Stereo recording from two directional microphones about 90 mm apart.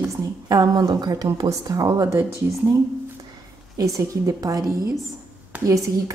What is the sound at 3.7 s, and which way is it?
A woman's voice, 40° right (ahead or behind).